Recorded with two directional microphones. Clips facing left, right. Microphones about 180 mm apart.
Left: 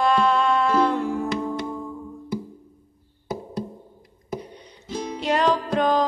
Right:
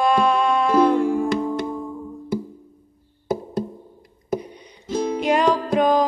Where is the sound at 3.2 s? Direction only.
50° right (ahead or behind).